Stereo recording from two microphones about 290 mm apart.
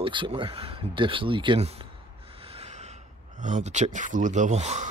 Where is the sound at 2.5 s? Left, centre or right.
Right.